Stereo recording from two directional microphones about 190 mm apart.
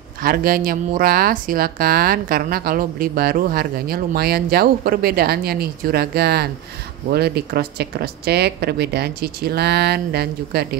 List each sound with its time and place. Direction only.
0.2 s speech: 50° right (ahead or behind)